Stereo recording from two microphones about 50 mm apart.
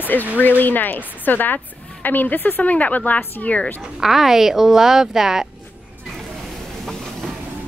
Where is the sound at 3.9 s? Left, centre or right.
Centre.